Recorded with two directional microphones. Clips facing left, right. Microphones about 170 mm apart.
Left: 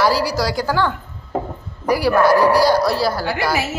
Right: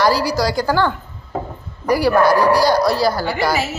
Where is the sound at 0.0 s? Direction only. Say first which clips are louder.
Right 1 dB; 5° left (ahead or behind).